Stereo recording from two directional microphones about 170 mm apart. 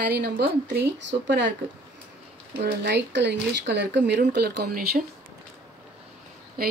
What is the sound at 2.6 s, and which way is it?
Speech, 85° right.